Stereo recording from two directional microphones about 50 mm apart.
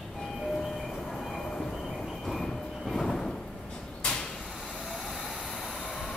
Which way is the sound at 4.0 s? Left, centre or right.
Centre.